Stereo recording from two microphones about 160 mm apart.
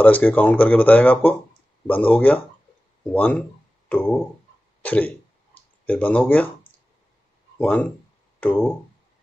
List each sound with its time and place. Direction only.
0.0 s speech: 10° left (ahead or behind)
4.8 s cough: 10° left (ahead or behind)
5.9 s speech: 10° left (ahead or behind)
7.5 s speech: 10° left (ahead or behind)